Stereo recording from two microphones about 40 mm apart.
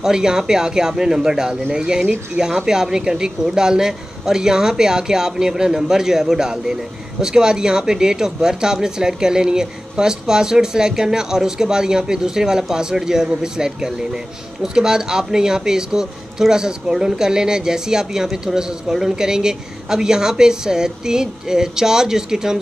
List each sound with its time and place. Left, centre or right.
0.0 s speech: centre